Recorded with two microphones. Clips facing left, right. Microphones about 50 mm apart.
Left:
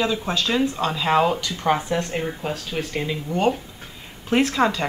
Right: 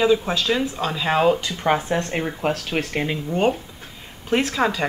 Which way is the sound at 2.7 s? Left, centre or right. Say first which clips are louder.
Right 3 dB; right.